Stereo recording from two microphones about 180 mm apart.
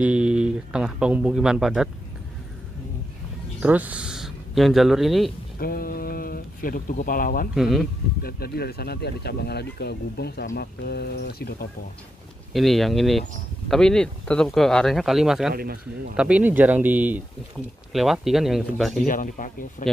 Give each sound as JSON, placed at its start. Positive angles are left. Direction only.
{"t": 0.0, "sound": "a man's voice", "side_deg": -5}
{"t": 3.6, "sound": "speech", "side_deg": -10}
{"t": 5.6, "sound": "speech", "side_deg": 55}
{"t": 7.5, "sound": "speech", "side_deg": 0}
{"t": 8.2, "sound": "speech", "side_deg": 60}
{"t": 12.5, "sound": "speech", "side_deg": 0}
{"t": 15.5, "sound": "speech", "side_deg": -55}
{"t": 16.2, "sound": "speech", "side_deg": -5}
{"t": 19.0, "sound": "speech", "side_deg": 50}